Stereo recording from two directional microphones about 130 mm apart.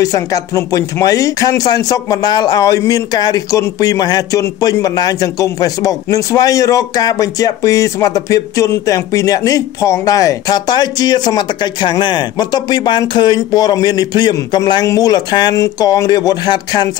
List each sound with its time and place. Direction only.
0.0 s a man's voice: 25° left (ahead or behind)